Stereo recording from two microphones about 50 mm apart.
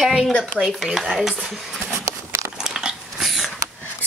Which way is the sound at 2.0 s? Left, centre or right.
Right.